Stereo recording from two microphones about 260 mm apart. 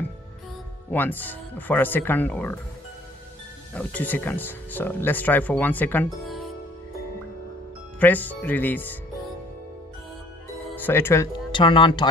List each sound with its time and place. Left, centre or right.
0.9 s speech: centre
3.7 s speech: centre
8.0 s speech: centre
10.8 s speech: centre